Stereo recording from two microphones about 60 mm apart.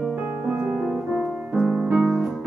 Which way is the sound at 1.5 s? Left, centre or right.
Centre.